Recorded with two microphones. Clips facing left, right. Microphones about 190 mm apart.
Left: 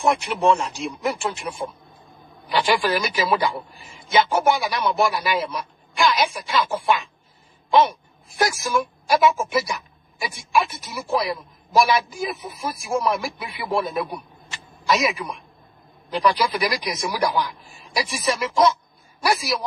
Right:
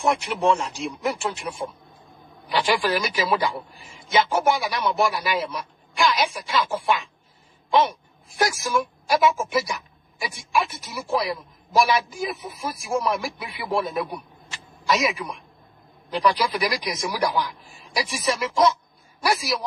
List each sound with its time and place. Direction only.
0.0 s a woman's voice: 60° left (ahead or behind)
8.4 s a woman's voice: 60° left (ahead or behind)
14.5 s a sound: 60° left (ahead or behind)
16.1 s a woman's voice: 60° left (ahead or behind)